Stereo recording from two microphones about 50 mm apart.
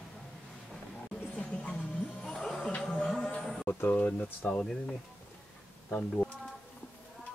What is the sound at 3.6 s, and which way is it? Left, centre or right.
Speech, left.